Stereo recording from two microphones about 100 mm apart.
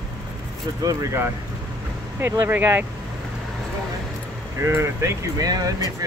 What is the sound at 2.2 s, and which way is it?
Speech, 25° right (ahead or behind).